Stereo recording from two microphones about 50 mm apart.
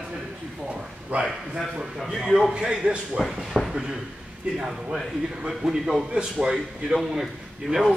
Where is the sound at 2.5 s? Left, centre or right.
Centre.